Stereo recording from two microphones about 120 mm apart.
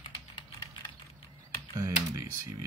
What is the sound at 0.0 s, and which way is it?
Typing, 40° left (ahead or behind).